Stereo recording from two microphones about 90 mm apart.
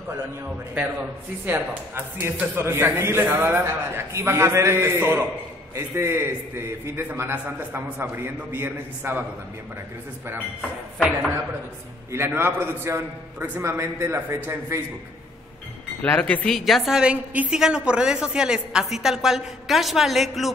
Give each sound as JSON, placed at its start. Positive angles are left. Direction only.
{"t": 1.4, "sound": "a man's voice", "side_deg": -20}
{"t": 12.1, "sound": "a man's voice", "side_deg": -25}
{"t": 16.0, "sound": "speech", "side_deg": 15}
{"t": 16.4, "sound": "a woman's voice", "side_deg": 0}